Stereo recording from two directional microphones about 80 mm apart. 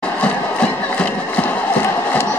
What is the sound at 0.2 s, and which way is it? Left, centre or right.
Crowd, centre.